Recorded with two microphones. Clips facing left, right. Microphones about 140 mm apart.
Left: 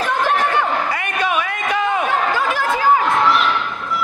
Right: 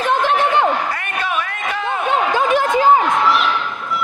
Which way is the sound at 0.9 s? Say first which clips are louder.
Left 2 dB; 10° left (ahead or behind).